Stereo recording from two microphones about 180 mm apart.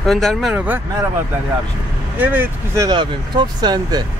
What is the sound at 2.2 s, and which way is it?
Speech, 10° right (ahead or behind).